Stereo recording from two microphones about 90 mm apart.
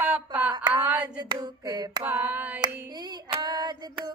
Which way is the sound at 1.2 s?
50° right (ahead or behind).